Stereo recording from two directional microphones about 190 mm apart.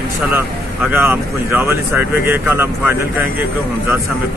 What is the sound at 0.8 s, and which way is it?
Speech, 10° right (ahead or behind).